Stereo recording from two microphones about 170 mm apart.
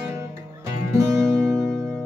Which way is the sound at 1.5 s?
Centre (ahead or behind).